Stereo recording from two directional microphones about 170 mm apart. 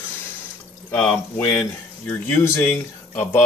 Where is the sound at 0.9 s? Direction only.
5° left (ahead or behind).